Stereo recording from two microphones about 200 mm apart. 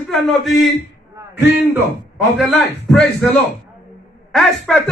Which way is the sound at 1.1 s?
15° right (ahead or behind).